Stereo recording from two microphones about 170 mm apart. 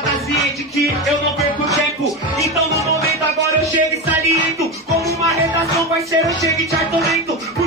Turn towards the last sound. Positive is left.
turn(degrees=20)  # may be behind; listen again after turning